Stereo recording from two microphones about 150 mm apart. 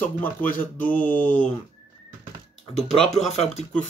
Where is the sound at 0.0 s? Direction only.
10° left (ahead or behind).